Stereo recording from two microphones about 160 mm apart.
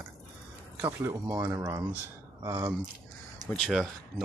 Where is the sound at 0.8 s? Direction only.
25° right (ahead or behind).